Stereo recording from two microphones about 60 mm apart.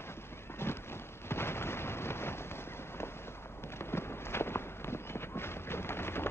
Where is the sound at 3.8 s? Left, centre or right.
Left.